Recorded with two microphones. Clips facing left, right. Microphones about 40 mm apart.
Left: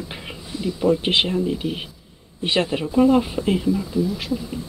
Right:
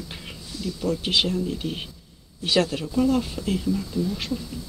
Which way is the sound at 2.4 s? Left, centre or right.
Left.